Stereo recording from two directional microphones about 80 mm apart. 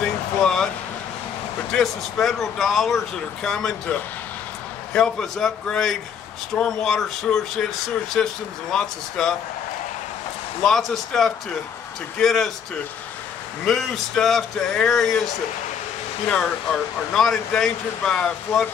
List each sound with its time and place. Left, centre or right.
0.0 s a sound: centre
1.7 s speech: centre
4.9 s speech: centre
8.2 s speech: centre
8.7 s speech: centre
10.6 s speech: centre
13.7 s speech: centre
16.3 s speech: centre